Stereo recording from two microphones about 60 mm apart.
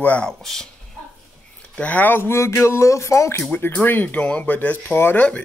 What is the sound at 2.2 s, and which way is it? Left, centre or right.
Speech, left.